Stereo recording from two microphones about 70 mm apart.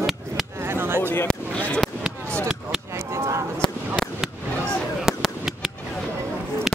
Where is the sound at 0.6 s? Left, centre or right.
Right.